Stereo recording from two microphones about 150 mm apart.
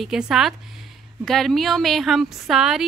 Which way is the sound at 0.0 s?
5° right (ahead or behind).